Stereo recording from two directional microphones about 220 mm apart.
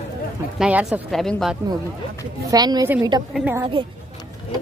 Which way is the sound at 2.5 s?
15° right (ahead or behind).